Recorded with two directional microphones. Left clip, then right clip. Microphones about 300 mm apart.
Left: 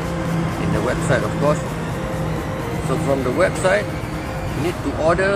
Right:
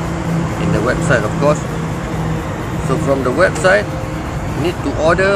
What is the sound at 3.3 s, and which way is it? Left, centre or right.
Speech, centre.